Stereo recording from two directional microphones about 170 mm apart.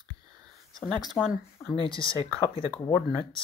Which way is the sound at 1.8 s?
30° left (ahead or behind).